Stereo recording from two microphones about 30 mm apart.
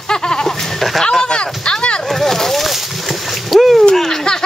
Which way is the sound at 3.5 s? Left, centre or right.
Centre.